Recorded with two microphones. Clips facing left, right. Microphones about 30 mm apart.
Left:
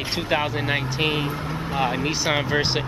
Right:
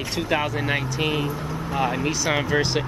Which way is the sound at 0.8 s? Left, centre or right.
Left.